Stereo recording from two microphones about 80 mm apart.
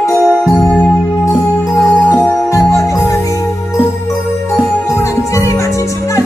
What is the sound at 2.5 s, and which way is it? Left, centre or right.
Music, left.